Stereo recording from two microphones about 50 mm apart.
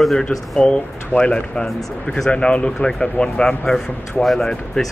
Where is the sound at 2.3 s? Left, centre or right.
Centre.